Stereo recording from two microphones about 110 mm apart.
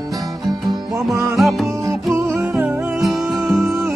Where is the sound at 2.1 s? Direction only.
15° right (ahead or behind).